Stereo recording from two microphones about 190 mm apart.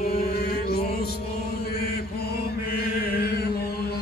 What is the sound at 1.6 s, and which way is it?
Chant, 55° left (ahead or behind).